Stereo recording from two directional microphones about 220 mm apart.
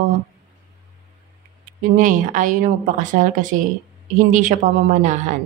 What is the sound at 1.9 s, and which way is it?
A woman's voice, 35° right (ahead or behind).